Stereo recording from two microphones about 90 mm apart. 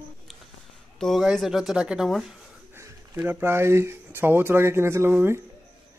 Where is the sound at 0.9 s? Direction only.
Centre (ahead or behind).